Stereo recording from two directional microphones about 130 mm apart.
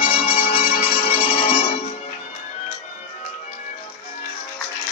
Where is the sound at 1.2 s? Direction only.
75° left (ahead or behind).